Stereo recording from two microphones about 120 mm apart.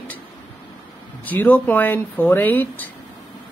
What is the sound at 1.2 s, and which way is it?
Speech, 15° left (ahead or behind).